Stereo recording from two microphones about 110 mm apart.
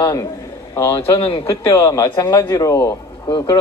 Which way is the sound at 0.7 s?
25° left (ahead or behind).